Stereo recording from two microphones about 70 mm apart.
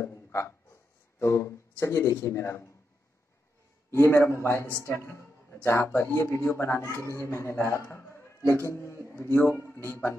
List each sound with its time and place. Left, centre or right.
0.0 s a sound: left
1.2 s speech: left
4.0 s a man's voice: left